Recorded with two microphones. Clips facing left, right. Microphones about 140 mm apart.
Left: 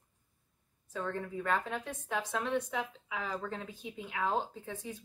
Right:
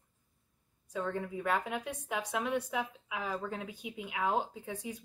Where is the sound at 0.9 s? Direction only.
10° right (ahead or behind).